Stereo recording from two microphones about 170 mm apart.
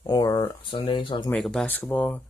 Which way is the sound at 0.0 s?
20° left (ahead or behind).